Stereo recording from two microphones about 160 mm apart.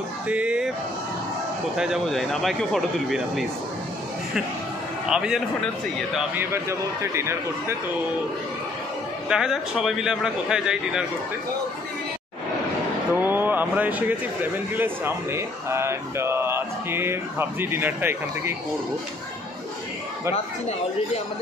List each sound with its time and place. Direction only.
0.3 s male singing: 5° right (ahead or behind)
1.8 s a man's voice: centre (ahead or behind)
5.0 s a man's voice: 5° right (ahead or behind)
9.3 s a man's voice: 5° right (ahead or behind)
13.1 s speech: 15° right (ahead or behind)